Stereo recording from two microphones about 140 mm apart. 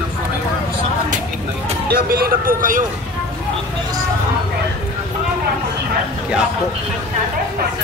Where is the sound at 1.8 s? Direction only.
90° right.